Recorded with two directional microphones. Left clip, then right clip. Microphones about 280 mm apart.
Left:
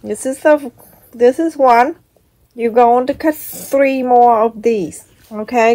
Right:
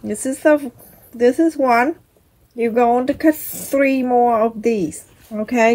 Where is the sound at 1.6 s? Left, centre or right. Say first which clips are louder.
Left 5 dB; centre.